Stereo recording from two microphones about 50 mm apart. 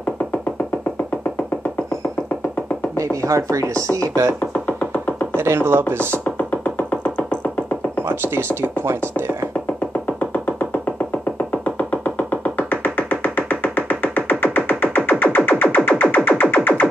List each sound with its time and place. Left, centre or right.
3.0 s speech: right
5.3 s speech: right
6.3 s music: left
8.1 s speech: right
10.3 s music: left